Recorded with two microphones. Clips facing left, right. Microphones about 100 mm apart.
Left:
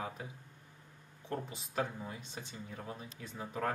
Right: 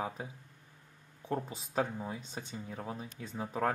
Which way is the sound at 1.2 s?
20° right (ahead or behind).